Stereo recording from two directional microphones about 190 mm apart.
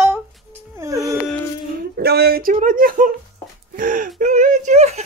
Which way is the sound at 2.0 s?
55° right (ahead or behind).